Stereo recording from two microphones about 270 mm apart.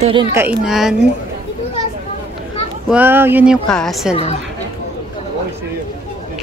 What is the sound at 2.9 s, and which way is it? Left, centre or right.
A woman's voice, centre.